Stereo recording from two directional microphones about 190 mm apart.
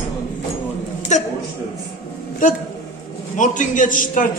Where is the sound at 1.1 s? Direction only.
40° left (ahead or behind).